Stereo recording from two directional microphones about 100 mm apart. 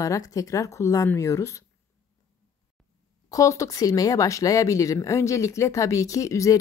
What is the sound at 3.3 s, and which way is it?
Speech, 30° left (ahead or behind).